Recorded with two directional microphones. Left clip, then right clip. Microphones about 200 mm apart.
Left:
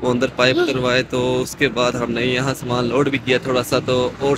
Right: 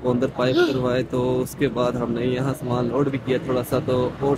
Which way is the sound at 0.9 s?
15° right (ahead or behind).